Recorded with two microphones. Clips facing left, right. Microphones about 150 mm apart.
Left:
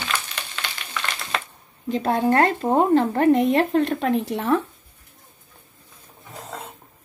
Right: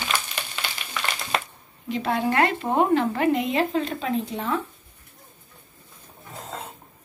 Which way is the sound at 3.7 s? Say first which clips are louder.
Left 5 dB; 65° left (ahead or behind).